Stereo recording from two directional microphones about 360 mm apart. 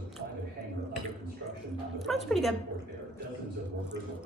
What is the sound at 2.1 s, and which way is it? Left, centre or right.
Speech, centre.